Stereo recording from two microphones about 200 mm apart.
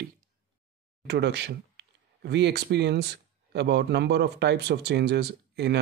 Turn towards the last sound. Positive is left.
turn(degrees=-55)  # may be behind; listen again after turning